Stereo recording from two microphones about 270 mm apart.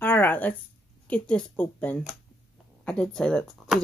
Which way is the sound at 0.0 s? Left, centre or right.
Centre.